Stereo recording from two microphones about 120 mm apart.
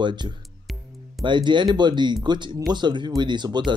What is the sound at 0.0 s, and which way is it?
Speech, 40° right (ahead or behind).